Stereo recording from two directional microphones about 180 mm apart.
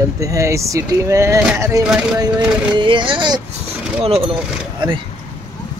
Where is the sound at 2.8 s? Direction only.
25° right (ahead or behind).